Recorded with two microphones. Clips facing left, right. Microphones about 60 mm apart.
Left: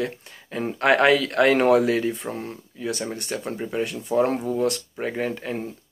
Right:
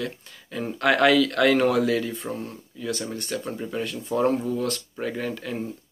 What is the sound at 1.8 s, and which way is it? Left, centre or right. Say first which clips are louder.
Speech: left 2 dB; left.